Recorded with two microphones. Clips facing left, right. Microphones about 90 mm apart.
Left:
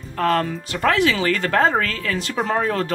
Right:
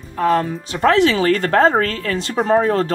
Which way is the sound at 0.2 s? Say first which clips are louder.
Right 3 dB; 10° right (ahead or behind).